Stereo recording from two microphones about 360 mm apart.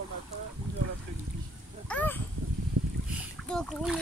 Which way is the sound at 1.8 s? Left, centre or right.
Centre.